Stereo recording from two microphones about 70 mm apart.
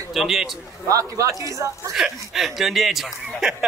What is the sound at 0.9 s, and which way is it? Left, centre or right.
Speech, right.